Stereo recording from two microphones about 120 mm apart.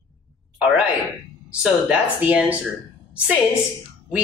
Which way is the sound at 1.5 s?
10° right (ahead or behind).